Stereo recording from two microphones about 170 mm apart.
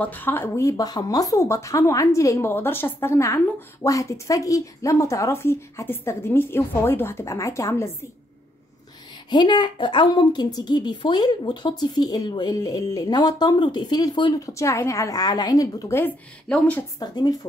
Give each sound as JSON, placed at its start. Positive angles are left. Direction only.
{"t": 0.0, "sound": "speech", "side_deg": 10}
{"t": 9.3, "sound": "a woman's voice", "side_deg": 25}
{"t": 17.0, "sound": "a woman's voice", "side_deg": 25}